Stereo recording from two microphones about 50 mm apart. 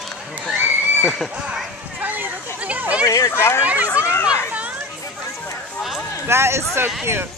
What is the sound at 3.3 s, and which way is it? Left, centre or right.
Speech, left.